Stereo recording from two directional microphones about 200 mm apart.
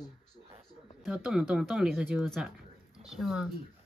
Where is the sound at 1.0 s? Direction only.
5° right (ahead or behind).